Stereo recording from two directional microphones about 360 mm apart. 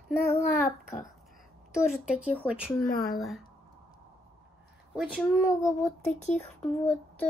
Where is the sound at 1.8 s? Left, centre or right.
Centre.